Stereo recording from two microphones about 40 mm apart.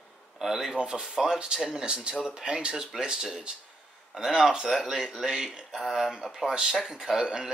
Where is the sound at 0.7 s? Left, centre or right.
Right.